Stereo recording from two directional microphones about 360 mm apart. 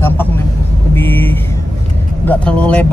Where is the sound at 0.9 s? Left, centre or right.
Centre.